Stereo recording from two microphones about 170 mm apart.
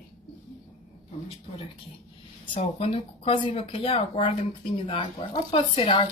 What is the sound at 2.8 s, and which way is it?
Speech, 35° left (ahead or behind).